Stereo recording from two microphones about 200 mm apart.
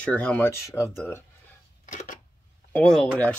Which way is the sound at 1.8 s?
40° left (ahead or behind).